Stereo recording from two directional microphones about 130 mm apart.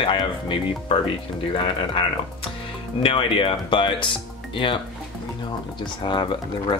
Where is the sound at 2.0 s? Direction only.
45° left (ahead or behind).